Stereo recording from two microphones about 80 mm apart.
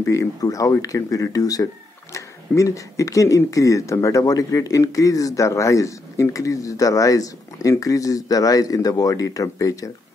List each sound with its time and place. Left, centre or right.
0.0 s speech: left